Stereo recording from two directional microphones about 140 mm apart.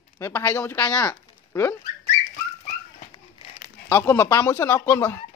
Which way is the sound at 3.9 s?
15° left (ahead or behind).